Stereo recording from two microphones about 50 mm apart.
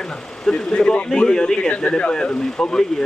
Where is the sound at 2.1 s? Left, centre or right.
Centre.